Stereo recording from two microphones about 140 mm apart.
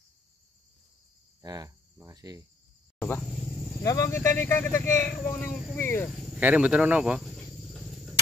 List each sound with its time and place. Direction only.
1.4 s cricket: 25° right (ahead or behind)
3.8 s speech: 25° left (ahead or behind)
6.0 s speech: centre (ahead or behind)
6.4 s arrow: 10° right (ahead or behind)